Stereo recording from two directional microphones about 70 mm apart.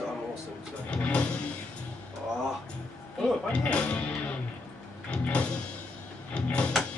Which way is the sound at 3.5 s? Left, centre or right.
Centre.